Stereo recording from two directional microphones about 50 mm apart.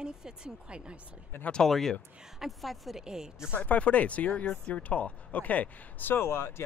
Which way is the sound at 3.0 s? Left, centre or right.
Centre.